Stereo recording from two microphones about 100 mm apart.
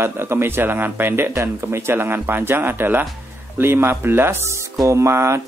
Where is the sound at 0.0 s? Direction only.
25° right (ahead or behind).